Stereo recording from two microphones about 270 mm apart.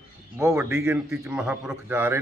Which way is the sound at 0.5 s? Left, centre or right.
Centre.